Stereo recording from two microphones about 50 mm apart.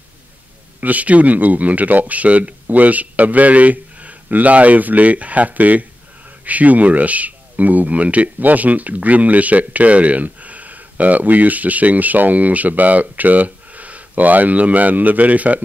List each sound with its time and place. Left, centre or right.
0.7 s speech: right